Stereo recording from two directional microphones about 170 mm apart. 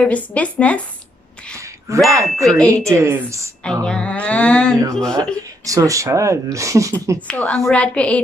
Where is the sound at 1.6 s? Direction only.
15° right (ahead or behind).